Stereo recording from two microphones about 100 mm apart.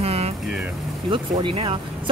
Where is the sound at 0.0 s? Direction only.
90° right.